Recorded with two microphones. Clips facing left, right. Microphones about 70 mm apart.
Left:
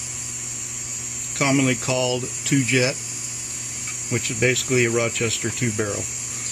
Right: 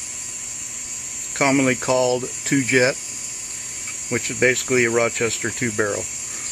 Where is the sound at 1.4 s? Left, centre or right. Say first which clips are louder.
Right 2 dB; right.